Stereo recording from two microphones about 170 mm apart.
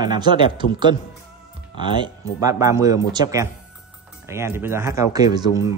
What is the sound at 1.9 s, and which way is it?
Speech, 25° right (ahead or behind).